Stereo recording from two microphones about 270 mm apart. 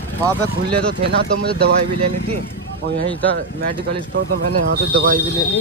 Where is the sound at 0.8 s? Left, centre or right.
Right.